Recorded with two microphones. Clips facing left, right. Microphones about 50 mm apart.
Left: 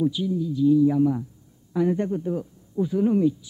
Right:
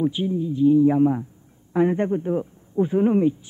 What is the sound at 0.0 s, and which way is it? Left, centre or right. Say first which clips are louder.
A man's voice: right 1 dB; right.